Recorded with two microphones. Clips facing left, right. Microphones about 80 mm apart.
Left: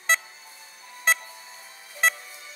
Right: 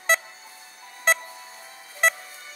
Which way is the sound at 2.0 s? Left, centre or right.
Centre.